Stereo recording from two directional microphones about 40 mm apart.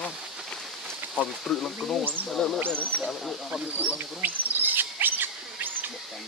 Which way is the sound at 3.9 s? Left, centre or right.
Right.